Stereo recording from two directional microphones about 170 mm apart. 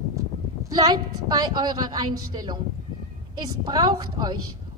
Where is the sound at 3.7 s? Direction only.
25° right (ahead or behind).